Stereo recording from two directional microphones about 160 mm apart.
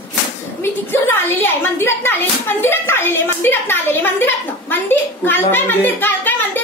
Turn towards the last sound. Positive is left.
turn(degrees=10)  # may be behind; listen again after turning